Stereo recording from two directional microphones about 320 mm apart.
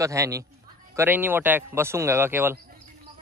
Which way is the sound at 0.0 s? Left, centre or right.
Centre.